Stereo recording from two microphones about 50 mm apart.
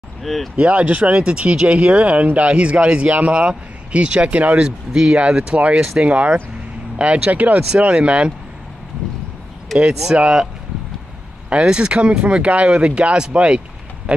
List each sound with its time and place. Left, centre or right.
0.2 s speech: centre
0.6 s speech: right
4.6 s speech: centre
10.1 s speech: centre
11.6 s speech: centre